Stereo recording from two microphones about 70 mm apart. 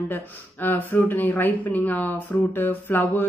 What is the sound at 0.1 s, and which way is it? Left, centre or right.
Speech, left.